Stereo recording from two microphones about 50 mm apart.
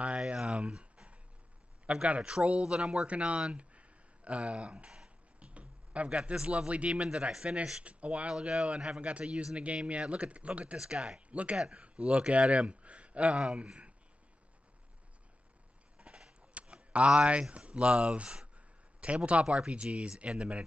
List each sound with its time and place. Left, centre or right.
0.6 s a sound: centre
1.9 s speech: right
11.1 s speech: right
11.5 s speech: centre
16.0 s a sound: right
19.4 s speech: centre